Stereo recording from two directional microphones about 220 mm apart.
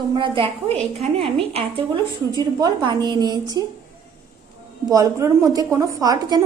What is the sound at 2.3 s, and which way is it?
A woman's voice, 20° right (ahead or behind).